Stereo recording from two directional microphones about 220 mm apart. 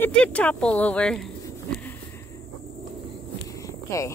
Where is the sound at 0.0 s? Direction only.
5° left (ahead or behind).